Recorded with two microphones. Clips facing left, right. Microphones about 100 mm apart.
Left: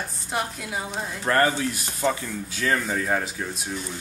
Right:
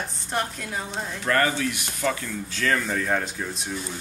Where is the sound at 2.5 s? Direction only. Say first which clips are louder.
Even; 10° left (ahead or behind).